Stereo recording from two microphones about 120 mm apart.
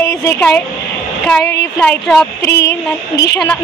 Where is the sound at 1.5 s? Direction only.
15° left (ahead or behind).